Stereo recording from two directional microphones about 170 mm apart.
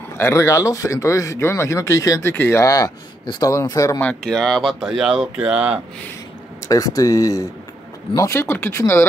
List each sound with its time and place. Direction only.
0.2 s speech: 15° left (ahead or behind)
4.0 s speech: 5° left (ahead or behind)
6.7 s speech: 20° left (ahead or behind)